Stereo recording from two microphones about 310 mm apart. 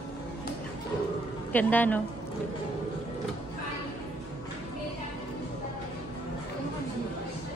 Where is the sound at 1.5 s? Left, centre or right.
Centre.